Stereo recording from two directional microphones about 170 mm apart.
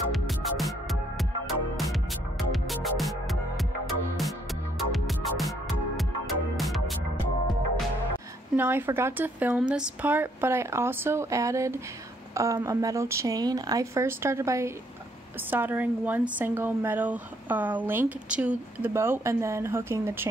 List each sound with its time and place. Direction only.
0.1 s music: centre (ahead or behind)
8.5 s a woman's voice: 10° right (ahead or behind)